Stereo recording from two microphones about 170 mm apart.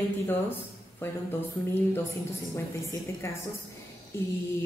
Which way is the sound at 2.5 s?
15° left (ahead or behind).